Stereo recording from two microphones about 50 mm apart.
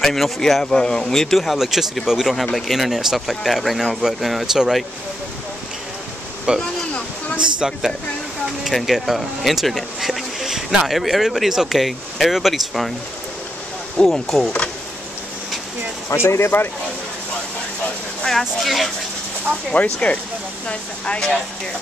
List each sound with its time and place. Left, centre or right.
0.0 s speech: centre
6.5 s speech: centre
8.6 s speech: centre
13.9 s speech: centre
16.1 s speech: left
18.6 s speech: centre
19.7 s speech: left